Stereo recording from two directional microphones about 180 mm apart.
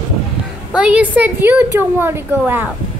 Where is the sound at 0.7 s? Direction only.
5° right (ahead or behind).